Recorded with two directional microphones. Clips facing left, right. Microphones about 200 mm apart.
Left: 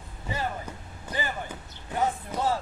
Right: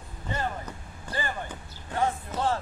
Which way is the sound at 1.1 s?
10° left (ahead or behind).